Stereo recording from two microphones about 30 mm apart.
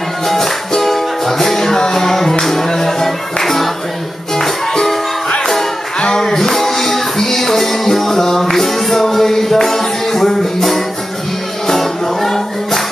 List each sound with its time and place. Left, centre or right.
0.3 s music: centre
6.1 s music: centre